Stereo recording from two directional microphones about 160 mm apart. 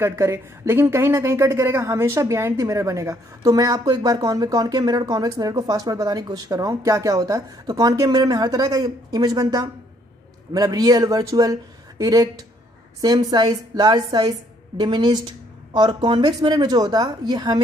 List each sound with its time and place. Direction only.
0.0 s speech: 15° right (ahead or behind)